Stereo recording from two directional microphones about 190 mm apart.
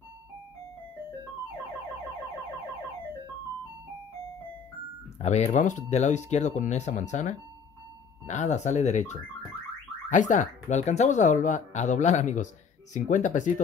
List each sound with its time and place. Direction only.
5.2 s speech: 35° left (ahead or behind)